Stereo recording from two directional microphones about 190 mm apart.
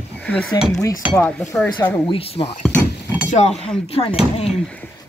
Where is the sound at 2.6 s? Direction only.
10° left (ahead or behind).